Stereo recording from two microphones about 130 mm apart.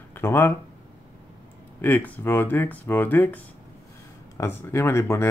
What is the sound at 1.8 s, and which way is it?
Speech, 15° left (ahead or behind).